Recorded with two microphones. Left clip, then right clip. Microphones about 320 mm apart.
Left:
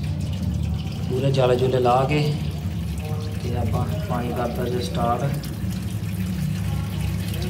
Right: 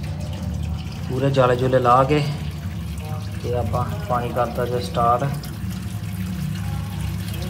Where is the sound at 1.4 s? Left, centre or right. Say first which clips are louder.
Right 2 dB; centre.